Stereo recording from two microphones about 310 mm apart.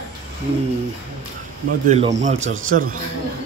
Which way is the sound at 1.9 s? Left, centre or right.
Right.